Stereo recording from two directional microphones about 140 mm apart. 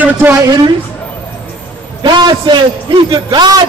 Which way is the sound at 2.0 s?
35° right (ahead or behind).